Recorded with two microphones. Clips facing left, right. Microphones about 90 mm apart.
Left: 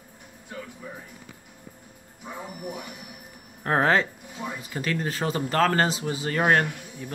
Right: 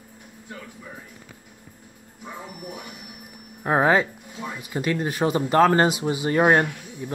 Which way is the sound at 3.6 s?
10° right (ahead or behind).